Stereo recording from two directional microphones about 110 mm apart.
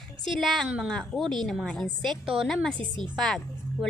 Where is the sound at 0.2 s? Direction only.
Centre (ahead or behind).